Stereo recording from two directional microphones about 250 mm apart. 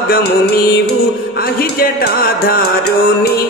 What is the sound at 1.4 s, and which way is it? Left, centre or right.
Music, left.